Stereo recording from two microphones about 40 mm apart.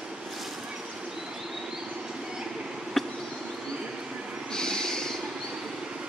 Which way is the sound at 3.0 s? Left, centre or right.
Centre.